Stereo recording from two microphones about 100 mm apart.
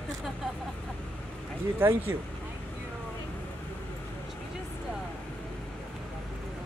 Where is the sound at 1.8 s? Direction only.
25° right (ahead or behind).